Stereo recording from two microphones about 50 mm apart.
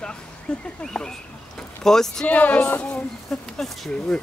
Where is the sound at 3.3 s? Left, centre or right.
Centre.